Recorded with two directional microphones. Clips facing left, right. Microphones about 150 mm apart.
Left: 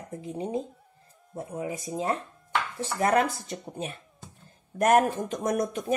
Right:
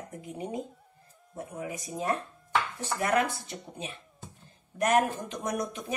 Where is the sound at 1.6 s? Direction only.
25° left (ahead or behind).